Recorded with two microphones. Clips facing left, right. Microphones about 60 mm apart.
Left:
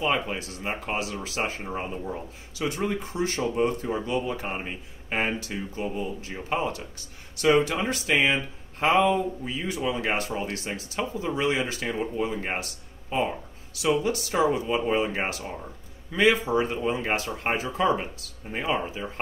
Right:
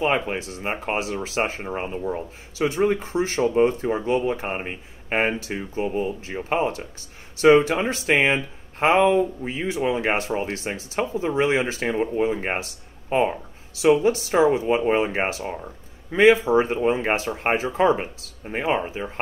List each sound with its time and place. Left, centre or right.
0.0 s speech: right
2.7 s speech: right
13.3 s a sound: right
14.0 s speech: right